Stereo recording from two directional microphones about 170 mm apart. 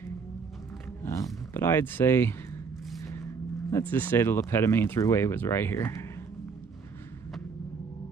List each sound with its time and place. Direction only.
1.0 s speech: 15° left (ahead or behind)
3.0 s vehicle: 15° left (ahead or behind)
3.7 s speech: 10° left (ahead or behind)